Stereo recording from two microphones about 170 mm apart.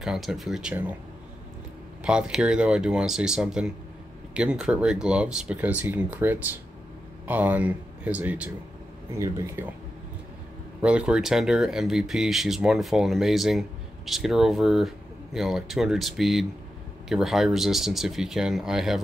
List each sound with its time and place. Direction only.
0.0 s speech: centre (ahead or behind)
2.0 s speech: 5° right (ahead or behind)
10.8 s speech: 5° right (ahead or behind)